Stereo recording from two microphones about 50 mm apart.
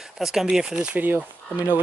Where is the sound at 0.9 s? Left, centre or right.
Right.